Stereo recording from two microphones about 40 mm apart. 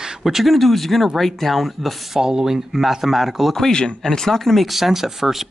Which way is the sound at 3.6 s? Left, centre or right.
Centre.